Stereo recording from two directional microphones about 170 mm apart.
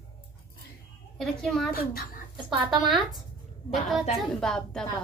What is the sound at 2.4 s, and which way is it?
Speech, centre (ahead or behind).